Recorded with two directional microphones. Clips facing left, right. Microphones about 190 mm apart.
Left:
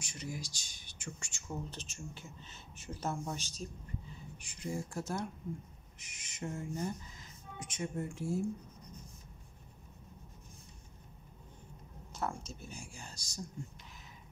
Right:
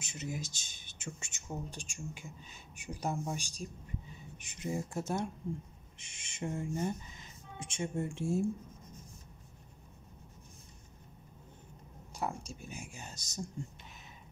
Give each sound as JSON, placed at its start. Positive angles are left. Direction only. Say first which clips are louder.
{"t": 0.0, "sound": "speech", "louder": "right 2 dB", "side_deg": -20}
{"t": 12.1, "sound": "speech", "louder": "right 1 dB", "side_deg": -10}